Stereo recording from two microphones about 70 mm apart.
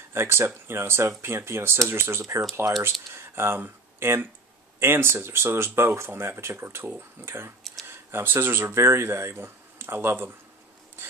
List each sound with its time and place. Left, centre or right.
0.1 s speech: right